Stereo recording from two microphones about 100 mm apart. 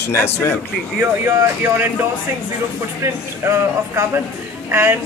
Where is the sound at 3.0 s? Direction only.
25° right (ahead or behind).